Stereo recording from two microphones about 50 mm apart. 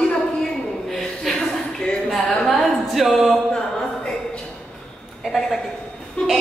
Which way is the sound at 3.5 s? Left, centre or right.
Centre.